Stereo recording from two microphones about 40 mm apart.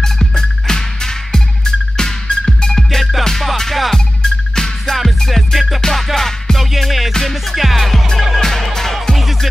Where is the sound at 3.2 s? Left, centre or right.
Centre.